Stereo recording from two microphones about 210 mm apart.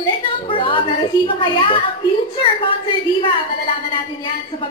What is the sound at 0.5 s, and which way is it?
A child's voice, 25° left (ahead or behind).